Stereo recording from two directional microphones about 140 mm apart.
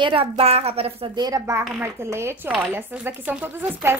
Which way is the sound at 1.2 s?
20° right (ahead or behind).